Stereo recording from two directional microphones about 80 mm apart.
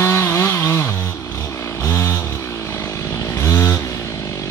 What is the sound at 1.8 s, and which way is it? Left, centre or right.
Vehicle, left.